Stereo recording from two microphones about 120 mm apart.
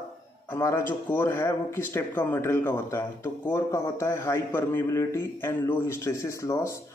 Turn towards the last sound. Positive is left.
turn(degrees=25)  # may be behind; listen again after turning